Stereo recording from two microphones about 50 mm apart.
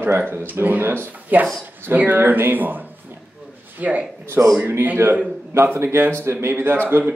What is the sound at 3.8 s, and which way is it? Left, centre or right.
Speech, right.